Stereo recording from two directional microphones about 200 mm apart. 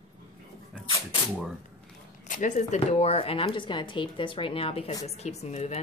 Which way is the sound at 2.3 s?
40° left (ahead or behind).